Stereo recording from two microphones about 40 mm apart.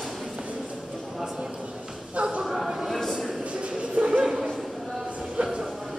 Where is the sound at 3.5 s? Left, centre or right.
Right.